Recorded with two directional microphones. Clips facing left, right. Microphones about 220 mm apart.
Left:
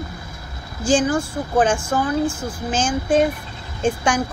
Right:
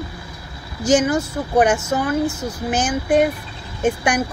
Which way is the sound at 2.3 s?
40° right (ahead or behind).